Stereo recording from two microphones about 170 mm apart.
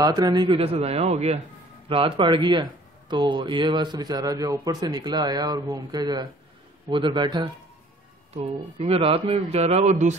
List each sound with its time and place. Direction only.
0.0 s a man's voice: 20° right (ahead or behind)
8.3 s a man's voice: 35° right (ahead or behind)